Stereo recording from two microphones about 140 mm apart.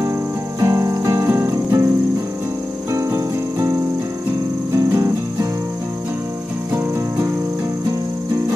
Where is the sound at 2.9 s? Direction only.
20° right (ahead or behind).